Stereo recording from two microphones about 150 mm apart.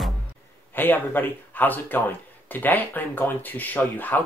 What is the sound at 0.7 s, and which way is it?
Speech, 15° left (ahead or behind).